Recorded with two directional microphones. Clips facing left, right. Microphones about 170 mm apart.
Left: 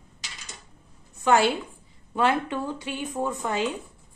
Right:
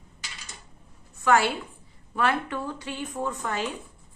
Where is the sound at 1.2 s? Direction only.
20° left (ahead or behind).